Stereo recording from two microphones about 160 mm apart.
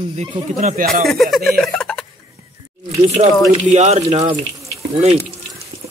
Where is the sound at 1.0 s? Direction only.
Centre (ahead or behind).